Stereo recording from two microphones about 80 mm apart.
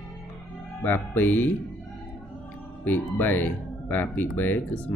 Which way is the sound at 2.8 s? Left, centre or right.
Left.